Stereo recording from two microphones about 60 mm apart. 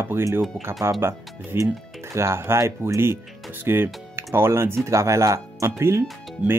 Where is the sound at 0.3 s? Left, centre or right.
Right.